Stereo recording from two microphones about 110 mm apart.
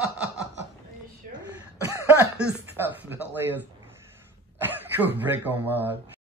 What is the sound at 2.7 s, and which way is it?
Speech, 20° right (ahead or behind).